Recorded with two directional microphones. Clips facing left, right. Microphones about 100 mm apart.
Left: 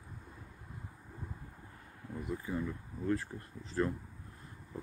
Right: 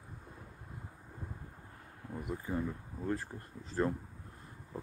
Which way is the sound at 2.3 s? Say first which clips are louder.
Right 1 dB; 25° right (ahead or behind).